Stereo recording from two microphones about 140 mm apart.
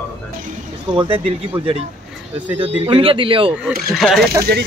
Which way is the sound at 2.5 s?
40° right (ahead or behind).